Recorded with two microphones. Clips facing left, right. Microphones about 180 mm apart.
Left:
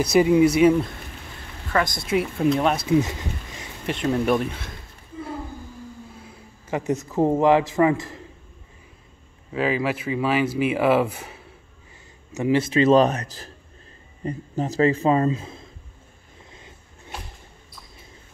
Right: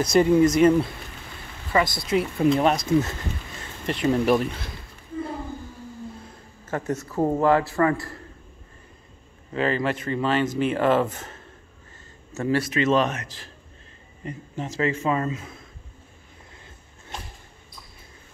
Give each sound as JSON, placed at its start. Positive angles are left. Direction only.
{"t": 0.1, "sound": "speech", "side_deg": 5}
{"t": 1.7, "sound": "speech", "side_deg": -5}
{"t": 3.0, "sound": "a sound", "side_deg": 15}
{"t": 3.8, "sound": "speech", "side_deg": 0}
{"t": 6.2, "sound": "a sound", "side_deg": 5}
{"t": 6.8, "sound": "speech", "side_deg": 20}
{"t": 9.5, "sound": "speech", "side_deg": 5}